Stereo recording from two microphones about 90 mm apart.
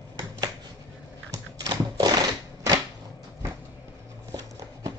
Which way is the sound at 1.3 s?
45° right (ahead or behind).